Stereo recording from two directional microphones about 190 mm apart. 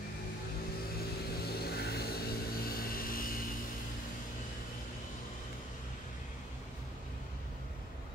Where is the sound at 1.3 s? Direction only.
55° left (ahead or behind).